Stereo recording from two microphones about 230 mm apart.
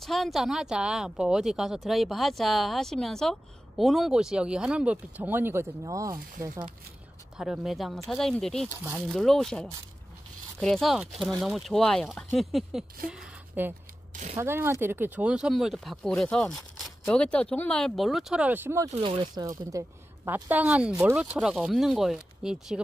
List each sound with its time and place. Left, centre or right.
0.0 s speech: centre
7.3 s speech: centre
13.1 s a sound: centre
14.3 s speech: centre
18.9 s speech: right; by 22.8 s centre